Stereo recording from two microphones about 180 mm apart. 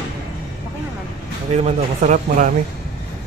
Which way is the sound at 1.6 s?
40° right (ahead or behind).